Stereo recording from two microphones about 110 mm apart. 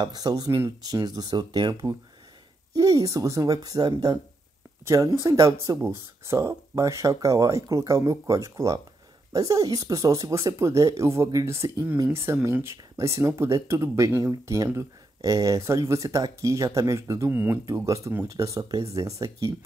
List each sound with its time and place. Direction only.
0.0 s speech: 35° right (ahead or behind)